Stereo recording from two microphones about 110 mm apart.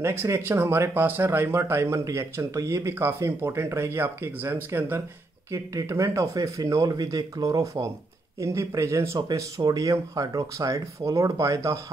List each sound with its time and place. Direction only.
0.0 s speech: 25° right (ahead or behind)
5.5 s speech: 30° right (ahead or behind)